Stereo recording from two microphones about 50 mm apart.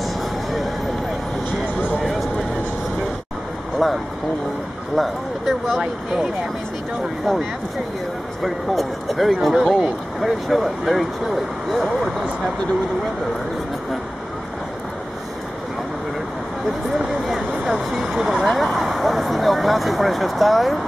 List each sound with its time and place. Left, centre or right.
0.0 s vehicle: centre
3.8 s speech: centre
8.4 s speech: centre
17.0 s a sound: centre
17.6 s speech: centre